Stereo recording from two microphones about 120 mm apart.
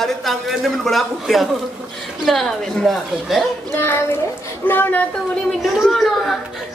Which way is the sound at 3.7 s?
15° left (ahead or behind).